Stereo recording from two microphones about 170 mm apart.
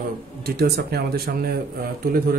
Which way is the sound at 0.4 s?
65° right (ahead or behind).